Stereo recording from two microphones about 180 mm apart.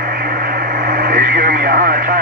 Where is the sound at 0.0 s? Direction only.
55° right (ahead or behind).